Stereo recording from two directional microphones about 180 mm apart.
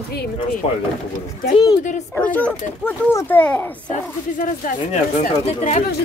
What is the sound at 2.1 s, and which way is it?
Speech, 10° left (ahead or behind).